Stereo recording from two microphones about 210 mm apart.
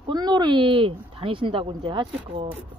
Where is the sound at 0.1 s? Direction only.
20° right (ahead or behind).